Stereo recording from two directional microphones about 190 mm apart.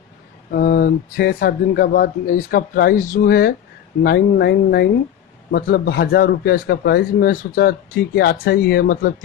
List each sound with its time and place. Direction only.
0.5 s speech: 55° left (ahead or behind)